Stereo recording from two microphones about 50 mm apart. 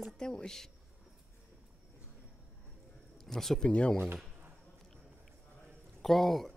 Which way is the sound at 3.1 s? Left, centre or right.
Centre.